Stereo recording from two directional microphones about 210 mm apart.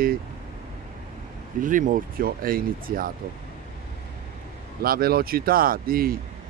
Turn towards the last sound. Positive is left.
turn(degrees=-45)  # may be behind; listen again after turning